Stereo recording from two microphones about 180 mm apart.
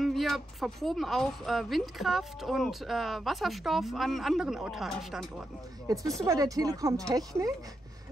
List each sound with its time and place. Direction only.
0.0 s speech: centre (ahead or behind)
6.2 s speech: 20° right (ahead or behind)